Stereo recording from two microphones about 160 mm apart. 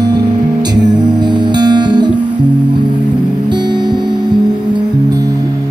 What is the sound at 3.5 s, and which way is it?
Music, 30° right (ahead or behind).